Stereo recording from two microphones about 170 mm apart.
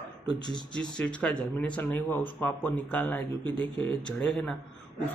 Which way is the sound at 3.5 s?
30° right (ahead or behind).